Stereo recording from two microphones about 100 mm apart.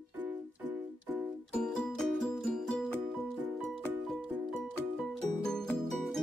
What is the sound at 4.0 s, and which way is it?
Music, centre (ahead or behind).